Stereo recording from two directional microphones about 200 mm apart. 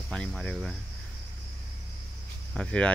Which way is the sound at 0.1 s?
5° left (ahead or behind).